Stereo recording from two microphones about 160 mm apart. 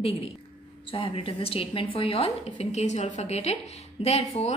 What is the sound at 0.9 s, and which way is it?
A woman's voice, 35° left (ahead or behind).